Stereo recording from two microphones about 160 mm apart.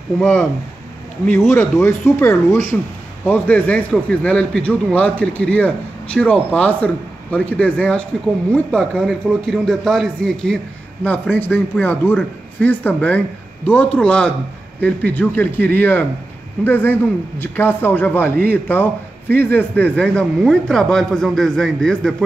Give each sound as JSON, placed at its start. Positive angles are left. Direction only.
{"t": 0.2, "sound": "a man's voice", "side_deg": 0}
{"t": 1.5, "sound": "a man's voice", "side_deg": 15}